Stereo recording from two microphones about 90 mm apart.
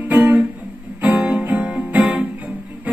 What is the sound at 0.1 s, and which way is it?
Music, 15° right (ahead or behind).